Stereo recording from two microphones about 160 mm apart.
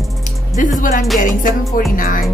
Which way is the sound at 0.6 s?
55° left (ahead or behind).